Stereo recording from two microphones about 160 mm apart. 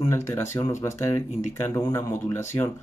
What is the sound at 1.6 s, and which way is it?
Speech, 20° left (ahead or behind).